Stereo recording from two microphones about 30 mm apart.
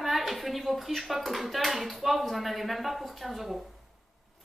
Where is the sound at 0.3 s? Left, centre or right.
Centre.